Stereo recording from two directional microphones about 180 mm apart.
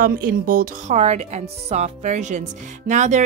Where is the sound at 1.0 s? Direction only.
40° right (ahead or behind).